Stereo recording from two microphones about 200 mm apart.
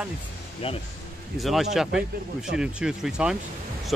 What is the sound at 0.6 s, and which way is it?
Speech, 25° left (ahead or behind).